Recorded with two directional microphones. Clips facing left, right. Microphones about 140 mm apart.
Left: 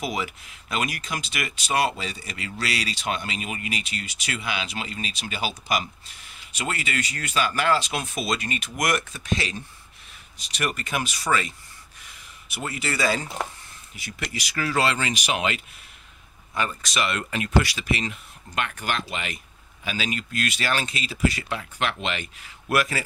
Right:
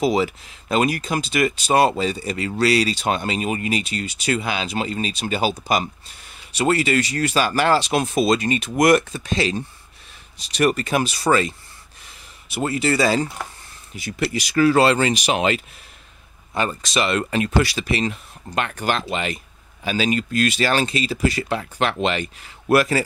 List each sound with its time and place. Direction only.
0.0 s speech: 30° right (ahead or behind)
6.6 s speech: 35° right (ahead or behind)